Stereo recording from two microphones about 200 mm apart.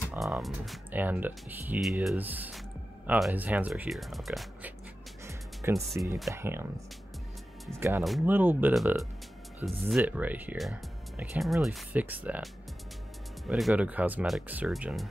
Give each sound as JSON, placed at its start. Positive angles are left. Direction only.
{"t": 0.1, "sound": "speech", "side_deg": 0}
{"t": 5.2, "sound": "music", "side_deg": -15}
{"t": 6.3, "sound": "speech", "side_deg": -10}
{"t": 7.7, "sound": "speech", "side_deg": -10}
{"t": 13.5, "sound": "speech", "side_deg": 0}